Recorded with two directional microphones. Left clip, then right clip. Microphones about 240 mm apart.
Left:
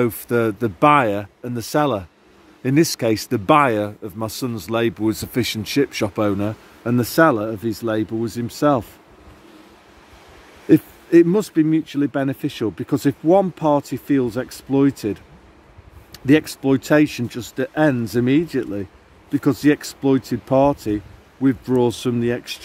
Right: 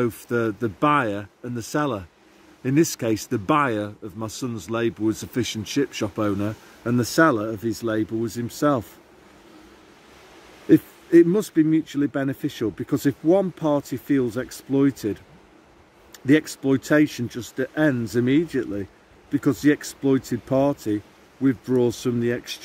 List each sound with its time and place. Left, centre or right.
0.0 s speech: left
10.7 s speech: left